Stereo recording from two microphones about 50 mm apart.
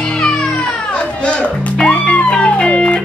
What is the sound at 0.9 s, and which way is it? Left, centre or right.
Music, left.